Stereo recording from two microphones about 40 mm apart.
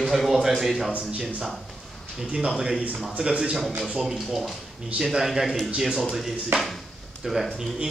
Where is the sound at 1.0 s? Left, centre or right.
Right.